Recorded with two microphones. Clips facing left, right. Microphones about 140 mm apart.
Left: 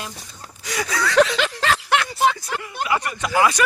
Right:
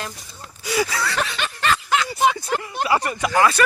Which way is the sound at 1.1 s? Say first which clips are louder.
Left 9 dB; 90° left.